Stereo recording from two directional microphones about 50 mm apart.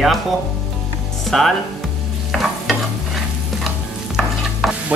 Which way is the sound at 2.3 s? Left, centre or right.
Centre.